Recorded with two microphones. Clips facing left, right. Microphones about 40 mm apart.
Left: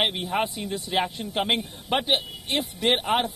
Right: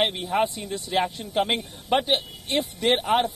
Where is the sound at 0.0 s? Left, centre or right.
Centre.